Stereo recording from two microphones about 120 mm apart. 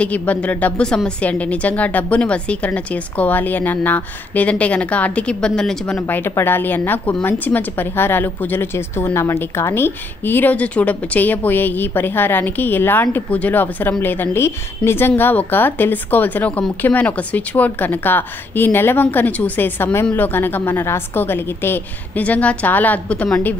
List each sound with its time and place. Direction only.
0.0 s a woman's voice: 15° left (ahead or behind)
5.9 s a woman's voice: 15° left (ahead or behind)